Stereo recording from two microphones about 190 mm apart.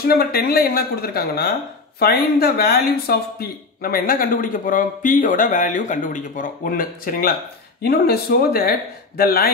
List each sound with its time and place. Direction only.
0.0 s speech: 55° left (ahead or behind)